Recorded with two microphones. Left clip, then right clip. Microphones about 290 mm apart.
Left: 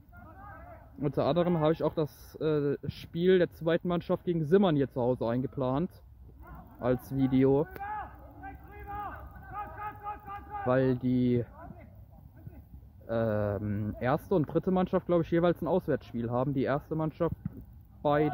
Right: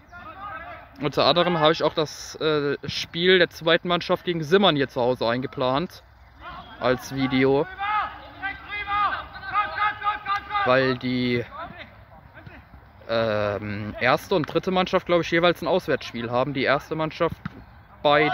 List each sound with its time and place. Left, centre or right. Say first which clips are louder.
0.7 s a man's voice: right 4 dB; centre
7.6 s a sound: right 12 dB; right
10.7 s a man's voice: right 5 dB; centre
13.1 s a man's voice: right 7 dB; centre